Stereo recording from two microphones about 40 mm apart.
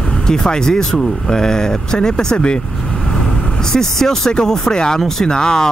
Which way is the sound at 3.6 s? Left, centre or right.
Centre.